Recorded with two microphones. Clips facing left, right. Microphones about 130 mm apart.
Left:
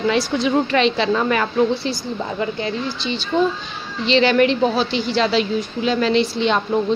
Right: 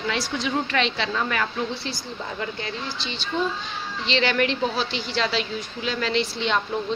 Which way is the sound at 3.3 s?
50° left (ahead or behind).